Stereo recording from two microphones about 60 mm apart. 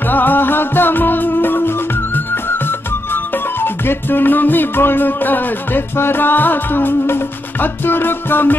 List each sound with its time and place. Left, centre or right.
0.1 s music: left
3.6 s music: left